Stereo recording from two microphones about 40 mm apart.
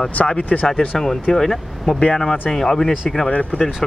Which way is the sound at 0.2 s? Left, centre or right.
Left.